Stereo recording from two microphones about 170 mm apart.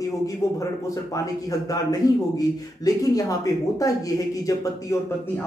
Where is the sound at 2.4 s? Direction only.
20° left (ahead or behind).